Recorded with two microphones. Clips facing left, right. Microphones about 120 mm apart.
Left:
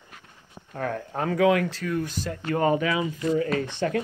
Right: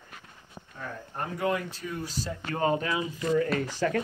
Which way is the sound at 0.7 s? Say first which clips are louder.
Left 9 dB; 75° left (ahead or behind).